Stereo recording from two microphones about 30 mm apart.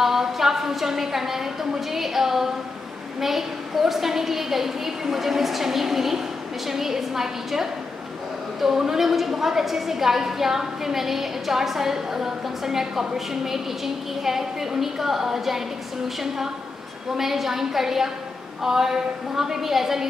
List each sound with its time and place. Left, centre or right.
0.0 s a woman's voice: centre
17.2 s a woman's voice: centre